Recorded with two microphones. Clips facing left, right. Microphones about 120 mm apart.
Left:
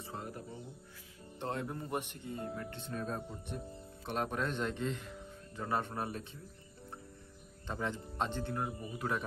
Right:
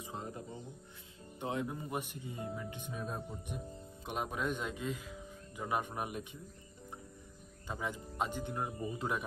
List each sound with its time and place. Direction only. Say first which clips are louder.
0.0 s music: even; 20° right (ahead or behind)
1.4 s speech: right 1 dB; 10° right (ahead or behind)
7.6 s speech: left 2 dB; 10° right (ahead or behind)